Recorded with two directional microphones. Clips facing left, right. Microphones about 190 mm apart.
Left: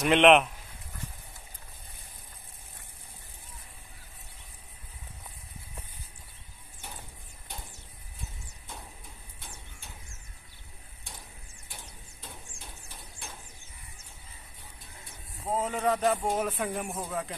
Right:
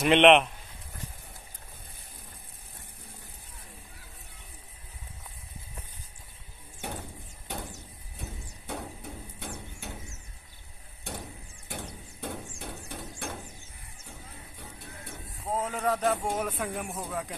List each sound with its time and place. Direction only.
0.0 s speech: centre (ahead or behind)
6.8 s a sound: 65° right (ahead or behind)
8.2 s hammer: 65° right (ahead or behind)
11.7 s a sound: 65° right (ahead or behind)
14.6 s music: 65° right (ahead or behind)
15.3 s speech: centre (ahead or behind)